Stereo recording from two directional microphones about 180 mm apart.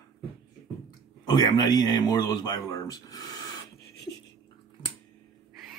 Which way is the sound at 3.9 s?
65° left (ahead or behind).